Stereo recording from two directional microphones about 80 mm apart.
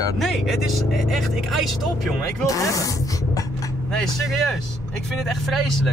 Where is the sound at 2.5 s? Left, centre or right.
Left.